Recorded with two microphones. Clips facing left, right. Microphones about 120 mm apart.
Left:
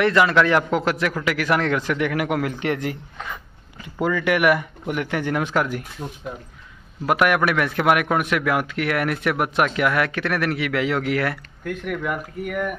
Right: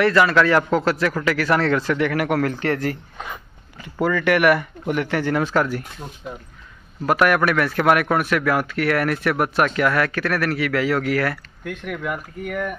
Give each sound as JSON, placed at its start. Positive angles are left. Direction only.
{"t": 0.0, "sound": "a man's voice", "side_deg": 20}
{"t": 4.0, "sound": "a man's voice", "side_deg": 15}
{"t": 7.1, "sound": "a man's voice", "side_deg": 10}
{"t": 11.6, "sound": "speech", "side_deg": 0}